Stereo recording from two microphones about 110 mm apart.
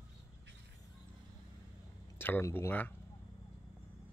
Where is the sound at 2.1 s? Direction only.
20° left (ahead or behind).